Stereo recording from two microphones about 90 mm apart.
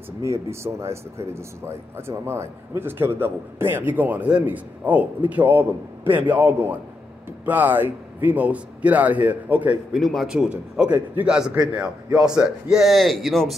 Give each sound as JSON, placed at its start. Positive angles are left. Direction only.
{"t": 0.2, "sound": "speech", "side_deg": -30}
{"t": 9.9, "sound": "a man's voice", "side_deg": 0}